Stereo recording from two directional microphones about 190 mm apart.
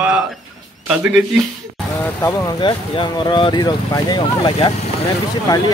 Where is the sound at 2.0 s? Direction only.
15° left (ahead or behind).